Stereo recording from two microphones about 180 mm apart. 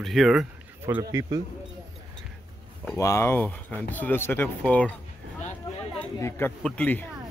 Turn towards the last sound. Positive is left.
turn(degrees=10)  # may be behind; listen again after turning